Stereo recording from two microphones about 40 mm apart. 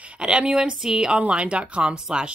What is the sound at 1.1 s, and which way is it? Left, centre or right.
Speech, right.